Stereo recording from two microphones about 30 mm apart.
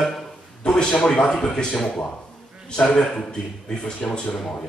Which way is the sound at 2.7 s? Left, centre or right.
Left.